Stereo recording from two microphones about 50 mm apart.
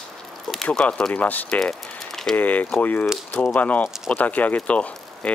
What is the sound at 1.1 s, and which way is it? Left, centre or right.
Speech, left.